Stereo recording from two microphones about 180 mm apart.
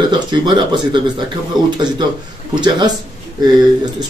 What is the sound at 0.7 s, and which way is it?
Speech, 25° right (ahead or behind).